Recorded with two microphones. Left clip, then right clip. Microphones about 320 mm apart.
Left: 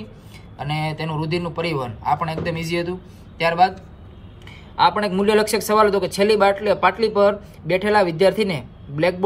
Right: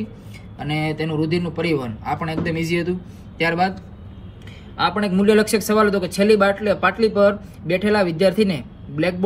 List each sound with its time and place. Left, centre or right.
0.6 s a man's voice: centre
4.7 s speech: left